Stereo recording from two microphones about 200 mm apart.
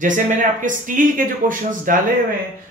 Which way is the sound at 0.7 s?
40° right (ahead or behind).